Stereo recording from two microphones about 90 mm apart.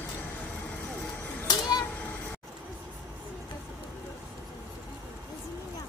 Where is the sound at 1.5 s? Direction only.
45° left (ahead or behind).